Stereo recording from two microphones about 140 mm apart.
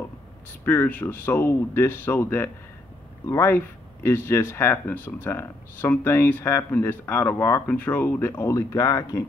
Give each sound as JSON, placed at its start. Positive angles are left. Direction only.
{"t": 0.7, "sound": "speech", "side_deg": 15}